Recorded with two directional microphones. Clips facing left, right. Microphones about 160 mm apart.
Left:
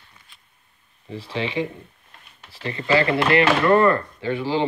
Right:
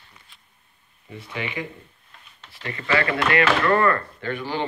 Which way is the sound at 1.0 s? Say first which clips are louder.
Left 5 dB; 30° left (ahead or behind).